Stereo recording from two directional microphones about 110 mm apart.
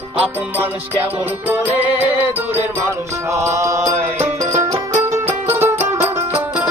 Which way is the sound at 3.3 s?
25° right (ahead or behind).